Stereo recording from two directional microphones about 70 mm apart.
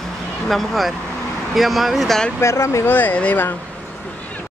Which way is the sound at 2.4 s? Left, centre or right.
Left.